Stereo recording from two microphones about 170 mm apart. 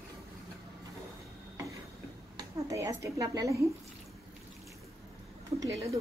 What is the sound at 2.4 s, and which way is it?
Speech, 20° right (ahead or behind).